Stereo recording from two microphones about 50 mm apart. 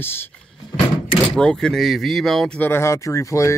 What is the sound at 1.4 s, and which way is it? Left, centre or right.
Speech, centre.